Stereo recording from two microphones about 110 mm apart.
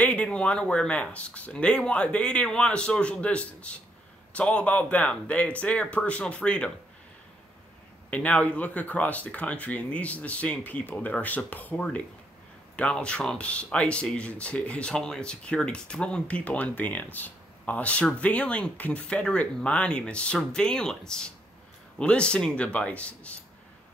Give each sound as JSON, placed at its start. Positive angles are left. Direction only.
{"t": 0.0, "sound": "speech", "side_deg": 10}
{"t": 8.1, "sound": "speech", "side_deg": 10}